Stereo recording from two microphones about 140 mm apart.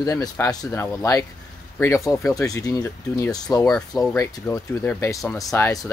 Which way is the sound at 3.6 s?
5° left (ahead or behind).